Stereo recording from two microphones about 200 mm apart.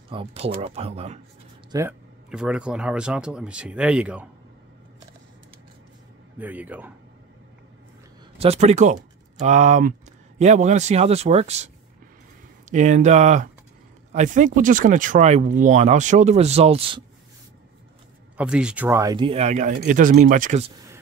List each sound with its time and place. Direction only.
0.1 s speech: 30° right (ahead or behind)
1.7 s speech: 15° right (ahead or behind)
6.3 s speech: 10° right (ahead or behind)
8.4 s speech: 30° right (ahead or behind)
18.4 s speech: 5° right (ahead or behind); by 20.7 s 35° right (ahead or behind)